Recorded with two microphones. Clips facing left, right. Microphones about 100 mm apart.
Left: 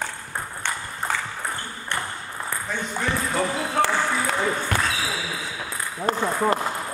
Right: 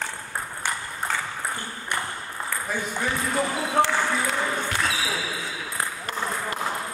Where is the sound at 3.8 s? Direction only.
20° right (ahead or behind).